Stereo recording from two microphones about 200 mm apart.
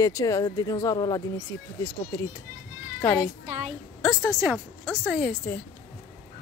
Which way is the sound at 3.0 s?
10° left (ahead or behind).